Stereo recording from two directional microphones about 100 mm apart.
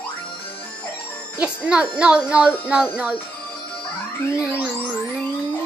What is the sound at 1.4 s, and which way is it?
Speech, 10° right (ahead or behind).